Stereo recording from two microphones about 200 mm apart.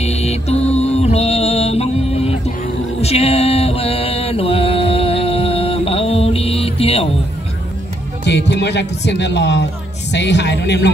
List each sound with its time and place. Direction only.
0.0 s music: 30° left (ahead or behind)
3.0 s mantra: 30° left (ahead or behind)
8.2 s speech: 60° left (ahead or behind)